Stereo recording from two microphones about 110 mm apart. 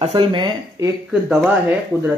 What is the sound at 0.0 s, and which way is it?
Speech, 60° right (ahead or behind).